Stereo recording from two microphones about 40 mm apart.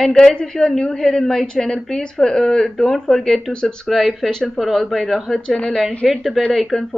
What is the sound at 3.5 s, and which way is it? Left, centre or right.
Speech, left.